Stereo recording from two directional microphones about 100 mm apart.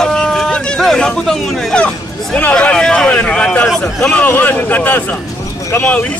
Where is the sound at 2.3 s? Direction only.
15° left (ahead or behind).